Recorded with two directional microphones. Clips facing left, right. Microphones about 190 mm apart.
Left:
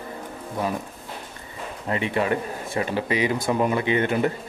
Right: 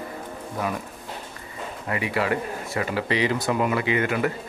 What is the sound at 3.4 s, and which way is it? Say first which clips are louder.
Speech: left 1 dB; 25° left (ahead or behind).